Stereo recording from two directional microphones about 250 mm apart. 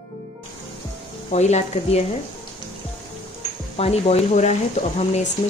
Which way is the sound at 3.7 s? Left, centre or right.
Left.